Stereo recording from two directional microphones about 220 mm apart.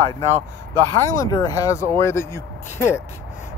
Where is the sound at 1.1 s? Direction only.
15° left (ahead or behind).